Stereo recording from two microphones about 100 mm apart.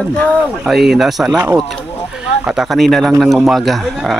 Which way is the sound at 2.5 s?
Centre (ahead or behind).